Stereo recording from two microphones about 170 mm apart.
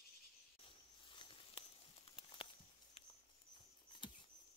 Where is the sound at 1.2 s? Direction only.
30° left (ahead or behind).